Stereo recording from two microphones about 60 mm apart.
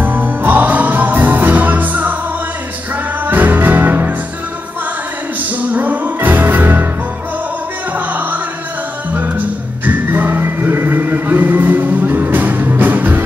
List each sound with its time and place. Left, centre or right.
0.0 s music: right
3.3 s music: right
5.6 s music: right
9.8 s music: right